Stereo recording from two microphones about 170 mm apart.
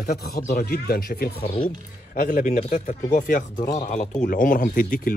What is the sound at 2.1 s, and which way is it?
Speech, 55° left (ahead or behind).